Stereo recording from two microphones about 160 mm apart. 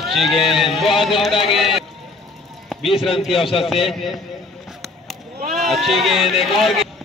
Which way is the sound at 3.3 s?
35° left (ahead or behind).